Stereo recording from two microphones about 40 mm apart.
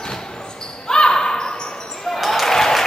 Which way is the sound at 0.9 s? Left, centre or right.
Centre.